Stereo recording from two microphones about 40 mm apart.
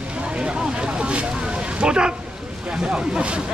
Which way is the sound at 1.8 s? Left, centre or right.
Right.